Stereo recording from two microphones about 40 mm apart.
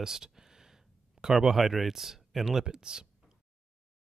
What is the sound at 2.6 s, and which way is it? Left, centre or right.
Speech, centre.